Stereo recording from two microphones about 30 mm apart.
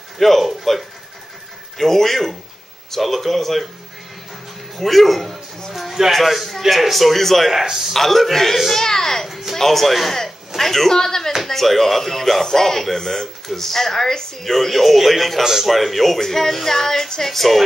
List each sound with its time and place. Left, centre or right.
0.2 s a man's voice: centre
4.7 s a man's voice: centre
5.7 s music: centre
6.1 s a man's voice: centre
9.3 s music: centre
9.6 s a man's voice: centre
14.4 s a man's voice: centre